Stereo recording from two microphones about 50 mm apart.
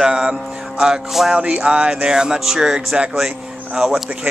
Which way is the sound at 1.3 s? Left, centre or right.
Right.